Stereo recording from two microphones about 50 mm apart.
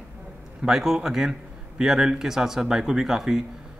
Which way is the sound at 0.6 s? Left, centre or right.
Centre.